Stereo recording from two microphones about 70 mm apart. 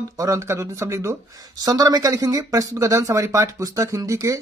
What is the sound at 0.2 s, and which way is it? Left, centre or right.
Speech, right.